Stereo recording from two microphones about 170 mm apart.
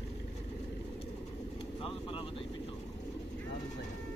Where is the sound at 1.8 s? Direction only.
30° left (ahead or behind).